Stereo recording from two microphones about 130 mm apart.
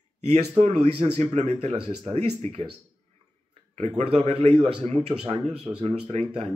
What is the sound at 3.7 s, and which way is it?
Speech, 60° right (ahead or behind).